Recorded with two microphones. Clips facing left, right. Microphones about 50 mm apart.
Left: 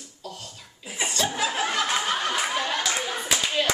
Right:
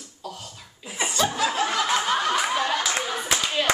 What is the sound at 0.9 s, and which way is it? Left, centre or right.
Chuckle, centre.